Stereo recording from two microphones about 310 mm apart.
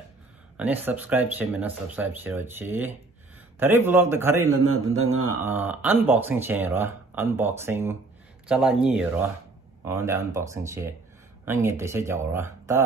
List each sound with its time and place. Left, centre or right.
0.6 s speech: centre
4.8 s speech: right
5.4 s speech: centre